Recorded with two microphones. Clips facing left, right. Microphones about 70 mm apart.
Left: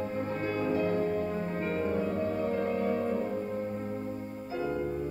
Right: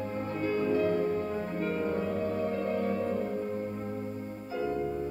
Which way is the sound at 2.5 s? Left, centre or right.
Left.